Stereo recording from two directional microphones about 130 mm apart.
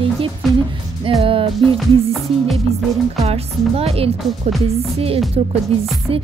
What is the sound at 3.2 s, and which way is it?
Speech, 50° right (ahead or behind).